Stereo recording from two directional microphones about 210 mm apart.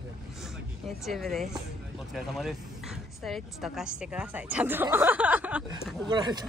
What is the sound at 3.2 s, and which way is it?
A woman's voice, centre (ahead or behind).